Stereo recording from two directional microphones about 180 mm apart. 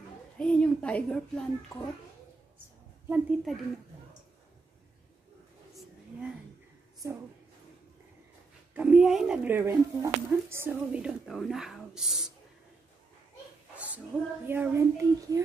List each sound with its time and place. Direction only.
0.4 s a child's voice: 5° left (ahead or behind)
3.1 s speech: 5° right (ahead or behind)
7.0 s a child's voice: 15° right (ahead or behind)
8.7 s speech: 5° right (ahead or behind)
13.7 s a child's voice: 10° right (ahead or behind)